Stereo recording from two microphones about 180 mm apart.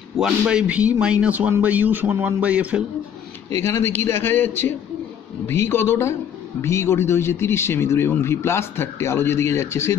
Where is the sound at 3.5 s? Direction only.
15° left (ahead or behind).